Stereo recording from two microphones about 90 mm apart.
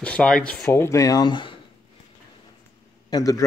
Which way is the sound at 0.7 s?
35° left (ahead or behind).